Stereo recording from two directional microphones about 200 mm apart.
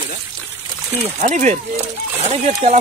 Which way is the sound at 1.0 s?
35° right (ahead or behind).